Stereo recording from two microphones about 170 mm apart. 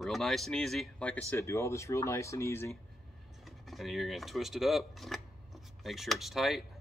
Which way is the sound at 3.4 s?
Centre (ahead or behind).